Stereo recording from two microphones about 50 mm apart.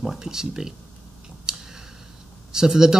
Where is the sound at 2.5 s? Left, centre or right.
Centre.